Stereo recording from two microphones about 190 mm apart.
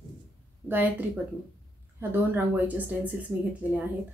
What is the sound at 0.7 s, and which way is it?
Speech, 10° right (ahead or behind).